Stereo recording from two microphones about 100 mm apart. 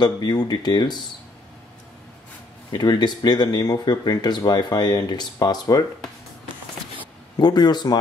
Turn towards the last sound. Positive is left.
turn(degrees=45)  # may be behind; listen again after turning